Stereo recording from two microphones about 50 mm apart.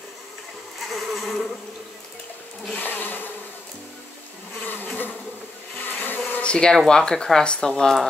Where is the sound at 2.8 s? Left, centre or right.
Left.